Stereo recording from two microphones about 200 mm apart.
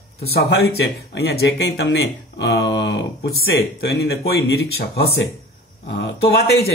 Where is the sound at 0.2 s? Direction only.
50° left (ahead or behind).